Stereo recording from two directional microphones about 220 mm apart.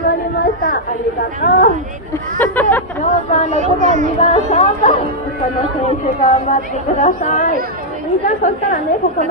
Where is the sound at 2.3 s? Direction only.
10° left (ahead or behind).